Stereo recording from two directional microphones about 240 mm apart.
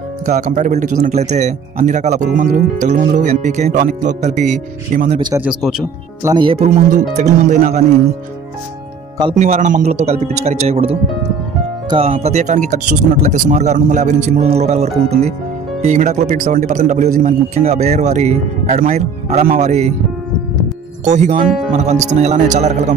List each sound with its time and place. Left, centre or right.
0.2 s speech: right
5.2 s speech: centre
6.3 s speech: right
9.2 s speech: right
21.0 s speech: right